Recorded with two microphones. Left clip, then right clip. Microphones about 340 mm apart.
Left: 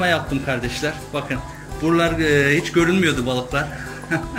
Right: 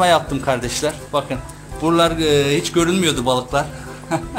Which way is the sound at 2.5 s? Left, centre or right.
Centre.